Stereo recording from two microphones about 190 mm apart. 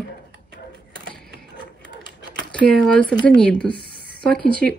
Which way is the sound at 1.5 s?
70° left (ahead or behind).